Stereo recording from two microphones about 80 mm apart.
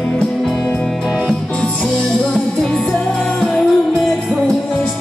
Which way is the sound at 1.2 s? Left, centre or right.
Centre.